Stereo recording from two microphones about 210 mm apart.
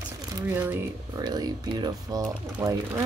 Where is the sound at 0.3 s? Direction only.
10° right (ahead or behind).